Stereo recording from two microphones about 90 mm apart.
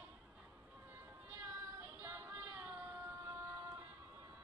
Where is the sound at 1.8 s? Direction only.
25° right (ahead or behind).